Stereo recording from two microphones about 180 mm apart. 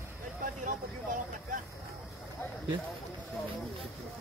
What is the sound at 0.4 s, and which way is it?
Vehicle, 45° right (ahead or behind).